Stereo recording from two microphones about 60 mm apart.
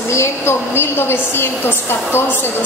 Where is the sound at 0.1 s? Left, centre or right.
Left.